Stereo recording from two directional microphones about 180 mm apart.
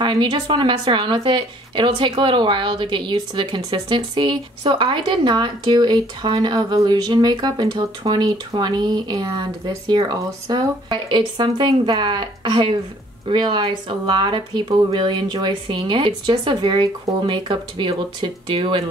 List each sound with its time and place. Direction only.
0.0 s speech: 25° right (ahead or behind)